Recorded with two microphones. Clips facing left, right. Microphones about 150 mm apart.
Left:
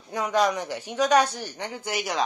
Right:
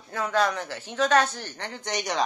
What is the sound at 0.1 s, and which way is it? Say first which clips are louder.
Speech: left 2 dB; 15° left (ahead or behind).